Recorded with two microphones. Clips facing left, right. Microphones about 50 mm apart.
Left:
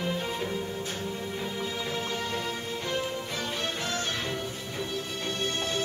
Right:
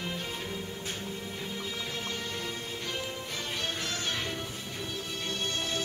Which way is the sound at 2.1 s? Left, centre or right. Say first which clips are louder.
Left 5 dB; left.